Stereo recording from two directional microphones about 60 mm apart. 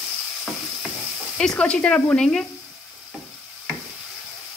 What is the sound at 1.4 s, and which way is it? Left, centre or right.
Speech, centre.